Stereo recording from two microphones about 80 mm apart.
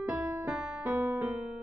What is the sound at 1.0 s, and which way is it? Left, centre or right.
Music, right.